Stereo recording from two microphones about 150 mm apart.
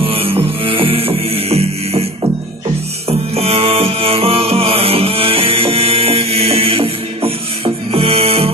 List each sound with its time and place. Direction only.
0.0 s music: 40° right (ahead or behind)
3.1 s music: 40° right (ahead or behind)